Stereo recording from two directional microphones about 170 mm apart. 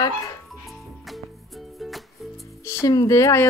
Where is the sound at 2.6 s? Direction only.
20° left (ahead or behind).